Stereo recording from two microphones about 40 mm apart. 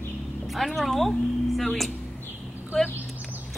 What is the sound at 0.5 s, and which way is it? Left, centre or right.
A woman's voice, centre.